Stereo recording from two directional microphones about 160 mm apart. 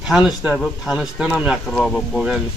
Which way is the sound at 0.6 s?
5° right (ahead or behind).